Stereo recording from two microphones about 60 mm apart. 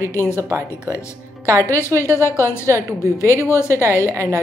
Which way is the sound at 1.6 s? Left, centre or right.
Left.